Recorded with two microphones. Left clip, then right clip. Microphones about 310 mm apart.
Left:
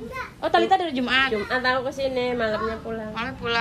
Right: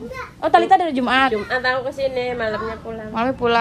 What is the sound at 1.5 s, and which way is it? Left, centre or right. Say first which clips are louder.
A woman's voice: right 3 dB; right.